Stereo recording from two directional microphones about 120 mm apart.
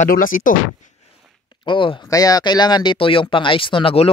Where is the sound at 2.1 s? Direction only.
30° left (ahead or behind); by 4.0 s 45° left (ahead or behind).